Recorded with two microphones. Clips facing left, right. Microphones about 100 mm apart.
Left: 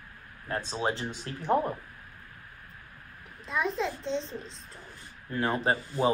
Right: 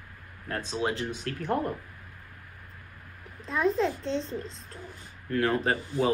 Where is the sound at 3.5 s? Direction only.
Centre (ahead or behind).